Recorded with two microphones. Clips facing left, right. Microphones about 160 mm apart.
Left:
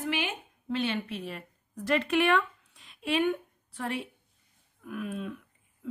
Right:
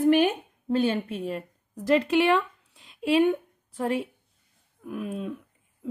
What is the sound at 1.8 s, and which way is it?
Speech, 35° right (ahead or behind).